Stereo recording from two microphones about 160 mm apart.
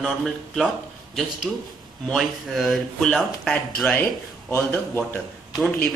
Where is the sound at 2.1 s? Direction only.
Centre (ahead or behind).